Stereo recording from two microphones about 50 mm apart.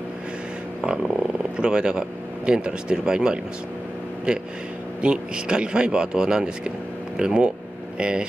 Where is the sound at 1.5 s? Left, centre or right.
Centre.